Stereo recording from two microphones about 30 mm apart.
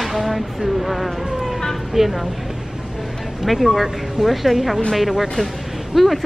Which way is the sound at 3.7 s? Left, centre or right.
Centre.